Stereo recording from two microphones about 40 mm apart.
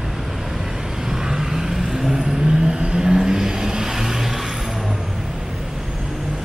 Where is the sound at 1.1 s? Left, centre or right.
Centre.